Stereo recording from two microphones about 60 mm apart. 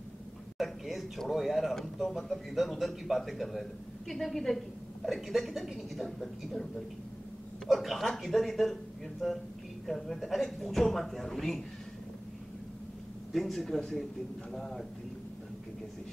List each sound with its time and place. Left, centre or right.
0.6 s speech: centre
13.3 s speech: centre